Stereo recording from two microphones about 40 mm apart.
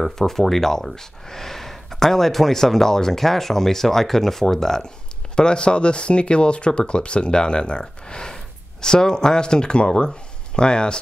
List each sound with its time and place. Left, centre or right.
0.0 s speech: centre